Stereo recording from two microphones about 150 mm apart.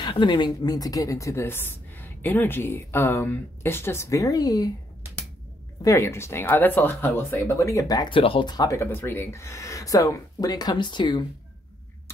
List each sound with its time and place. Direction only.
0.0 s a woman's voice: 30° left (ahead or behind)
5.8 s speech: 20° left (ahead or behind)